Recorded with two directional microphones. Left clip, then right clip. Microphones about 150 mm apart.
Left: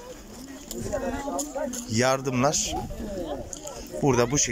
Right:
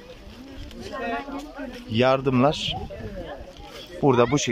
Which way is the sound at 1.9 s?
15° right (ahead or behind).